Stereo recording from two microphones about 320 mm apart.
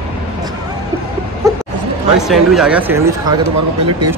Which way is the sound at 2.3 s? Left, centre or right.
Centre.